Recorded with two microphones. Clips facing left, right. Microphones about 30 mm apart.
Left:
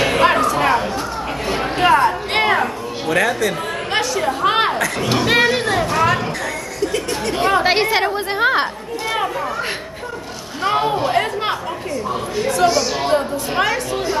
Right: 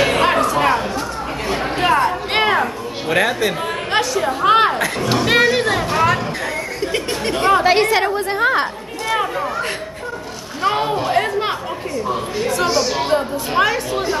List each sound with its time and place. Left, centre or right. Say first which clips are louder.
0.0 s chatter: even; centre
1.5 s a sound: left 2 dB; centre
3.1 s speech: even; centre
3.9 s a sound: right 1 dB; centre
5.1 s chatter: right 1 dB; centre
6.8 s chatter: left 2 dB; right
7.6 s a woman's voice: right 2 dB; centre
10.6 s a sound: left 1 dB; centre
12.1 s a woman's voice: even; centre